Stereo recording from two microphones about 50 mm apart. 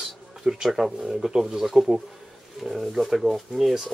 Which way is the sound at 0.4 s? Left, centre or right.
Centre.